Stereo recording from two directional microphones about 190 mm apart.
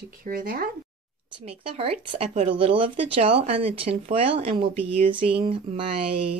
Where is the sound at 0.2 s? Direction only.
50° right (ahead or behind).